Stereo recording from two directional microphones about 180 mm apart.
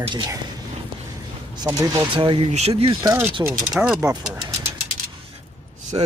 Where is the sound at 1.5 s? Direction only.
20° right (ahead or behind); by 2.9 s 35° right (ahead or behind).